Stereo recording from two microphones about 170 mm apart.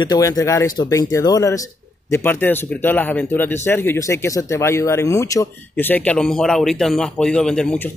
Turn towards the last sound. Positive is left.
turn(degrees=5)  # may be behind; listen again after turning